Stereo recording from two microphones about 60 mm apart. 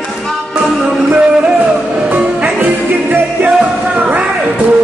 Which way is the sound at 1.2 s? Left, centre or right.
Centre.